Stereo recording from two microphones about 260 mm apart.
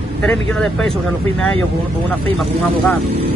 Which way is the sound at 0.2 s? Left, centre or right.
Centre.